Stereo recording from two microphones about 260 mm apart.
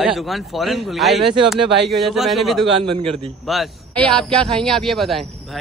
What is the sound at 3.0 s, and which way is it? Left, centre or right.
Speech, right.